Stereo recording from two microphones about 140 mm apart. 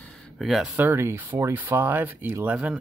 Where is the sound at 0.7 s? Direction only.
15° right (ahead or behind).